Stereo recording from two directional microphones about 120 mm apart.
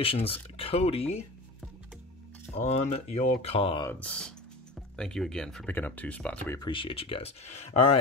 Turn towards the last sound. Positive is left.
turn(degrees=60)  # may be behind; listen again after turning